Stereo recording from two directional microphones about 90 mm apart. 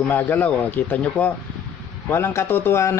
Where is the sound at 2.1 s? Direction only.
25° left (ahead or behind).